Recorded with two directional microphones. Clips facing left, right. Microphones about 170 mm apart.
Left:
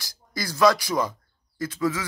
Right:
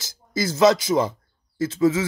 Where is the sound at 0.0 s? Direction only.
25° right (ahead or behind).